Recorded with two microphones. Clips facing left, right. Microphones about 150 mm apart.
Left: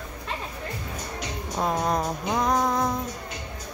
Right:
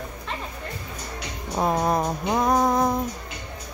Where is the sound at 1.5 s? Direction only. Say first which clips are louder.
Right 3 dB; 15° right (ahead or behind).